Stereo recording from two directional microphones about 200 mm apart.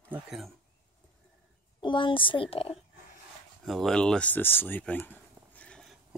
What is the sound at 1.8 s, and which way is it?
Speech, 25° left (ahead or behind).